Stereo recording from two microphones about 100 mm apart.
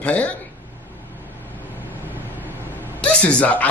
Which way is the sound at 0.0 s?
15° left (ahead or behind).